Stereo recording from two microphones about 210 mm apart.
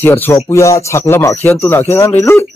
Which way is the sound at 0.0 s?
10° left (ahead or behind).